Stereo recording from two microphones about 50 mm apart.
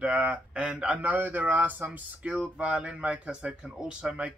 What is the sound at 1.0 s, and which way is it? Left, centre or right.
Speech, right.